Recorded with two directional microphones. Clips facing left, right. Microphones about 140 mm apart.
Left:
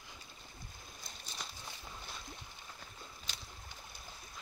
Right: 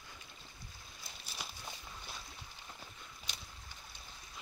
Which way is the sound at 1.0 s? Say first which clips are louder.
Even; 5° right (ahead or behind).